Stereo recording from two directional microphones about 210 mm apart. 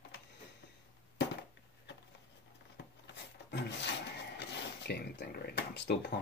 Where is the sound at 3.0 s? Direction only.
55° left (ahead or behind).